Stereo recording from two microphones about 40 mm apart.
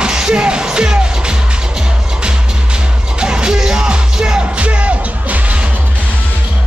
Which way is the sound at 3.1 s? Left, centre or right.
Right.